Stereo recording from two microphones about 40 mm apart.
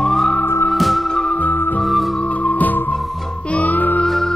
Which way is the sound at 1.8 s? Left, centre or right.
Centre.